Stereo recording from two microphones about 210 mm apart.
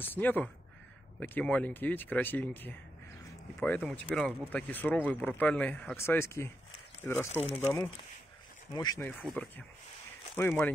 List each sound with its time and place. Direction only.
0.0 s speech: 10° left (ahead or behind)
8.7 s speech: 20° left (ahead or behind)
9.2 s speech: 5° left (ahead or behind)